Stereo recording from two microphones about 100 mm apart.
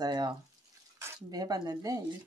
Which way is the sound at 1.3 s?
40° right (ahead or behind).